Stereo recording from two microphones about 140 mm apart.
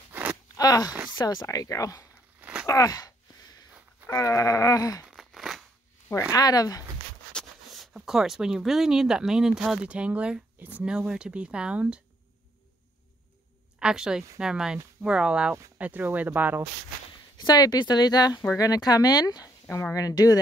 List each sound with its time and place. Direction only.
0.1 s a sound: 10° right (ahead or behind)
0.6 s speech: 25° left (ahead or behind)
4.1 s speech: 25° left (ahead or behind)
5.0 s a sound: centre (ahead or behind)
6.3 s speech: 25° left (ahead or behind)
7.3 s speech: centre (ahead or behind)
13.7 s speech: 5° right (ahead or behind)
17.4 s speech: 30° left (ahead or behind)